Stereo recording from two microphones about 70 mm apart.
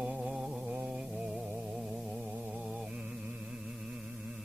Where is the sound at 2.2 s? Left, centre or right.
Centre.